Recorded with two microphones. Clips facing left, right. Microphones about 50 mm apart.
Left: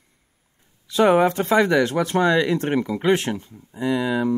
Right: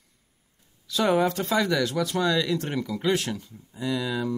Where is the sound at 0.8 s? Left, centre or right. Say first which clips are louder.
Left 6 dB; left.